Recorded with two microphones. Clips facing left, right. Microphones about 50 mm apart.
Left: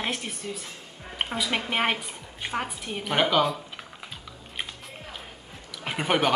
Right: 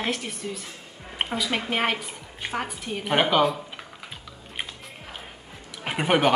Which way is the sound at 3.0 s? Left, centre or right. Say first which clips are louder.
Right 2 dB; centre.